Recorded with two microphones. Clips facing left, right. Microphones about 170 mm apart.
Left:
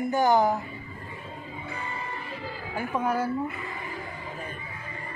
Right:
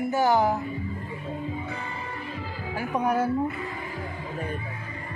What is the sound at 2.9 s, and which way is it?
Speech, 20° right (ahead or behind).